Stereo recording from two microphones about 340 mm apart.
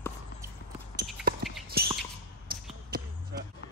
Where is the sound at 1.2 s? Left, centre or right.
Right.